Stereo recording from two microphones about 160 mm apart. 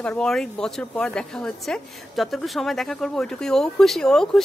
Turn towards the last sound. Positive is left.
turn(degrees=5)  # may be behind; listen again after turning